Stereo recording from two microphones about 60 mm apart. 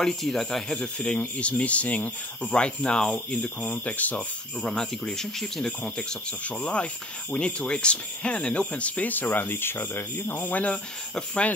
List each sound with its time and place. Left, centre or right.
0.0 s speech: centre
0.7 s speech: centre
4.6 s speech: centre; by 10.5 s left
10.5 s speech: left